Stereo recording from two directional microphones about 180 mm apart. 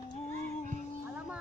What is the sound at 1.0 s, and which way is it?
Music, 10° right (ahead or behind).